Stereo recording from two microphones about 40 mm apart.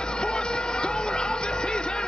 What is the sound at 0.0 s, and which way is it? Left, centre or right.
Music, left.